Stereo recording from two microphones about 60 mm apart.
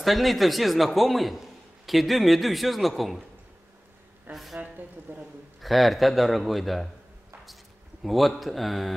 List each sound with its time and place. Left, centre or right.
0.0 s a man's voice: centre
4.3 s a man's voice: centre
4.6 s speech: right
5.6 s a man's voice: centre
8.0 s a man's voice: centre